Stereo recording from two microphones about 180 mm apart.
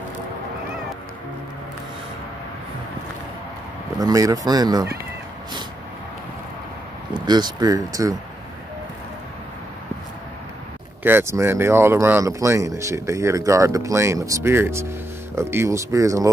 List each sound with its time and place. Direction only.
4.0 s speech: 20° right (ahead or behind)
7.2 s speech: 25° right (ahead or behind)
11.0 s speech: 10° right (ahead or behind)